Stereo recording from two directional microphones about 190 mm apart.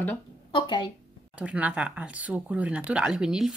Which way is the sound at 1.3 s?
5° right (ahead or behind).